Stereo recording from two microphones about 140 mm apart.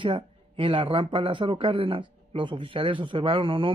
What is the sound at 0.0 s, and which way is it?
Speech, 40° right (ahead or behind).